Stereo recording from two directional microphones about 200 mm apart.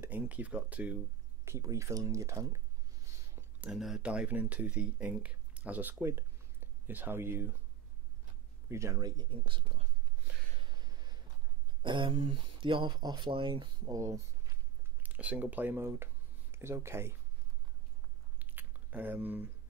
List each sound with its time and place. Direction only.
0.0 s speech: 5° right (ahead or behind)
3.3 s speech: 5° right (ahead or behind)
8.6 s speech: 15° right (ahead or behind)
10.8 s a sound: 20° right (ahead or behind)
11.8 s speech: 25° right (ahead or behind)
18.4 s biting: 10° right (ahead or behind)